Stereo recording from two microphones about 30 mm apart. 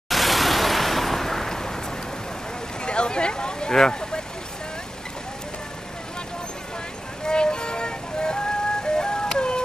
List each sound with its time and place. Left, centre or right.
0.1 s a sound: centre
2.8 s speech: left
7.2 s music: left